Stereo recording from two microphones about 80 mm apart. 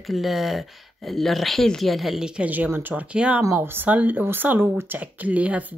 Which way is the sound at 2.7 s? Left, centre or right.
Right.